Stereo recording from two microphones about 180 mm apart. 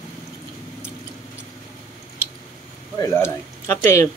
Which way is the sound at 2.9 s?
15° left (ahead or behind).